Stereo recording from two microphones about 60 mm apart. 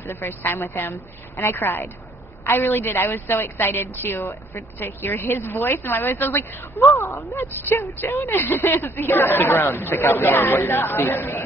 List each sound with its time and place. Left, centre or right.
0.0 s a woman's voice: left